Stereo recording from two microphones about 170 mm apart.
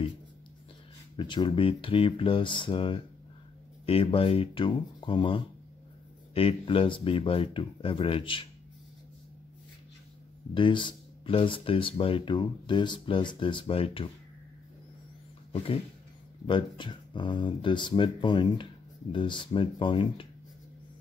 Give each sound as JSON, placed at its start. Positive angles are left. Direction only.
{"t": 1.1, "sound": "speech", "side_deg": 30}
{"t": 10.5, "sound": "speech", "side_deg": 30}
{"t": 15.5, "sound": "a sound", "side_deg": 35}
{"t": 16.4, "sound": "speech", "side_deg": 30}